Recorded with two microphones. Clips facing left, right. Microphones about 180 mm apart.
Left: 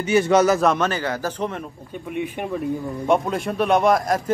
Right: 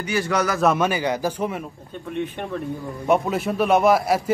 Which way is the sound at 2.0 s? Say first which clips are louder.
Left 1 dB; 10° left (ahead or behind).